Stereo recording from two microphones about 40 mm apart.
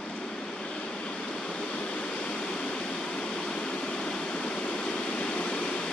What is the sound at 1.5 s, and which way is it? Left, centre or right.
Waterfall, left.